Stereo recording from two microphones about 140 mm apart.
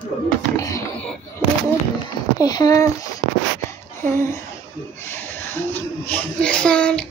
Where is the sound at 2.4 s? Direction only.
25° left (ahead or behind).